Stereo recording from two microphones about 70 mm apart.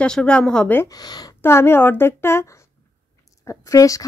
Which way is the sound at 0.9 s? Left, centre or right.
Left.